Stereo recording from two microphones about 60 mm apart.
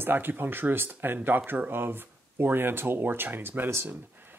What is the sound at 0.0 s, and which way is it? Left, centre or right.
Speech, right.